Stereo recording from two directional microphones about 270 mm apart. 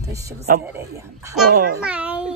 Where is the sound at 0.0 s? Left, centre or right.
Centre.